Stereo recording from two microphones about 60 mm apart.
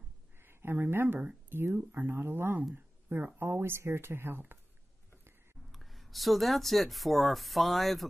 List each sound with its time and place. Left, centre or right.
0.4 s speech: right
2.7 s a sound: right
3.3 s speech: right
5.7 s speech: centre